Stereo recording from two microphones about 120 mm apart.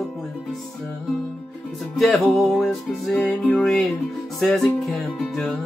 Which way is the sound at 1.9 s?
Centre (ahead or behind).